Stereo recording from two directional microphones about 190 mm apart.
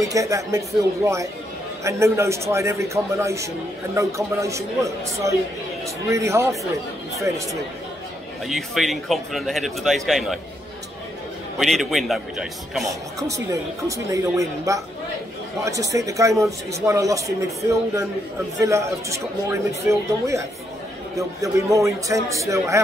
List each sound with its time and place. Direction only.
0.0 s speech: 15° right (ahead or behind)
8.5 s a man's voice: centre (ahead or behind)
11.5 s a man's voice: centre (ahead or behind)
13.5 s speech: 15° right (ahead or behind)